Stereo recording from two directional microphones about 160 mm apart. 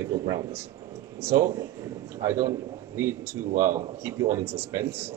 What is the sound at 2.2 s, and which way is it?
Speech, 20° right (ahead or behind).